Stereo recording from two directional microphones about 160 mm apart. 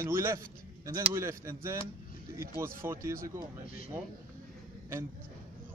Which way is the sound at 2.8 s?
15° right (ahead or behind).